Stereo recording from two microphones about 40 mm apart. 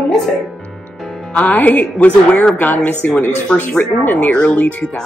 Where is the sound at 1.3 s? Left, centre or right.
Left.